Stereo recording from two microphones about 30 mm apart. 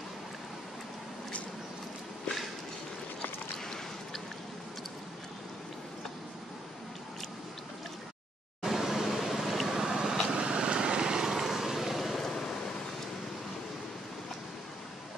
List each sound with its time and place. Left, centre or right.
3.5 s a sound: centre
8.6 s vehicle: centre
9.7 s vehicle: right
11.3 s vehicle: centre
12.2 s waves: centre